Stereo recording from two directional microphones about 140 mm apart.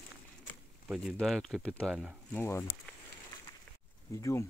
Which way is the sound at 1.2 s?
Centre (ahead or behind).